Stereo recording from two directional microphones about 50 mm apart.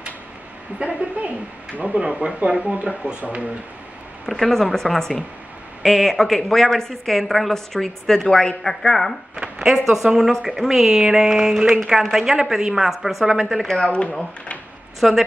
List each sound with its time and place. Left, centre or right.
0.7 s speech: right
2.0 s speech: centre
4.3 s a woman's voice: centre
9.3 s a sound: centre
9.8 s a woman's voice: centre
13.8 s speech: left
15.0 s speech: centre